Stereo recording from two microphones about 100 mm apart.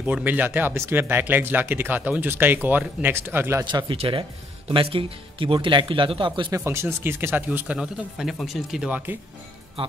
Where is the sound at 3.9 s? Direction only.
75° right (ahead or behind).